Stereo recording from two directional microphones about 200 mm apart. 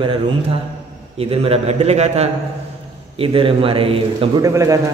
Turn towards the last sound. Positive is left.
turn(degrees=-15)  # may be behind; listen again after turning